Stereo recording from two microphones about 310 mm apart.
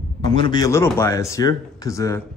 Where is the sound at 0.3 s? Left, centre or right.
Centre.